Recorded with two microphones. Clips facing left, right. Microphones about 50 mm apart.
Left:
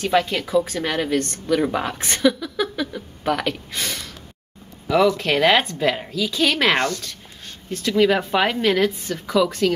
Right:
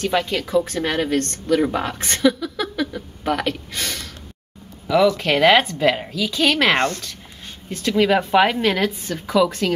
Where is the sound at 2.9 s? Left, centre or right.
Centre.